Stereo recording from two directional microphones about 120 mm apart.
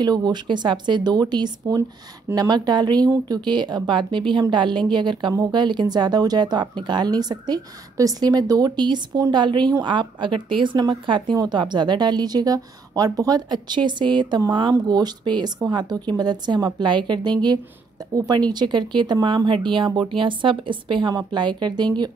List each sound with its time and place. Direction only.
0.0 s speech: 35° right (ahead or behind)